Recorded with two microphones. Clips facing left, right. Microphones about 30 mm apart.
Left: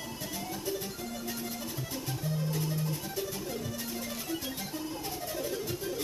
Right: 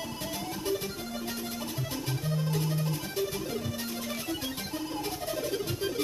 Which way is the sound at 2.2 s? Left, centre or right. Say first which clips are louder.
Right 2 dB; right.